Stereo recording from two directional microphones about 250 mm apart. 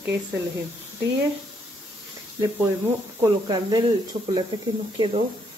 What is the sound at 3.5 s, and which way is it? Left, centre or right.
Speech, centre.